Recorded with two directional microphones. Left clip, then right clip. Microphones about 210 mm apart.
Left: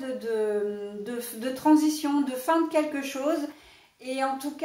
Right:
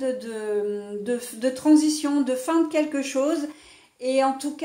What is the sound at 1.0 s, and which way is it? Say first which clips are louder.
A woman's voice: right 9 dB; 45° right (ahead or behind).